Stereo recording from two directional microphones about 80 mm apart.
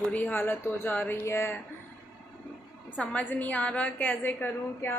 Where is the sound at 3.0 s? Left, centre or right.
Centre.